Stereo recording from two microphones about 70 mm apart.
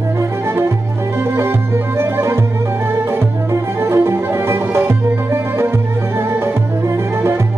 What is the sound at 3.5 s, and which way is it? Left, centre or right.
Music, right.